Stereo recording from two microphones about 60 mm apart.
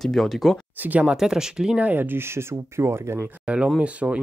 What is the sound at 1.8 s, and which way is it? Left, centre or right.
Speech, right.